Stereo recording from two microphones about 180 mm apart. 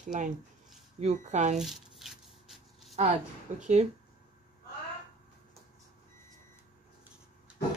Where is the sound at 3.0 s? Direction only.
40° right (ahead or behind).